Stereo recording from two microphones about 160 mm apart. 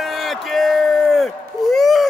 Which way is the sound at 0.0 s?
Centre (ahead or behind).